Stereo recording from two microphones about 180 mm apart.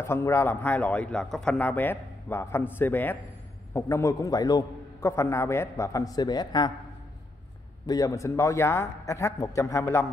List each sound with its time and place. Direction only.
0.0 s a man's voice: 15° left (ahead or behind)
7.8 s a man's voice: 20° left (ahead or behind)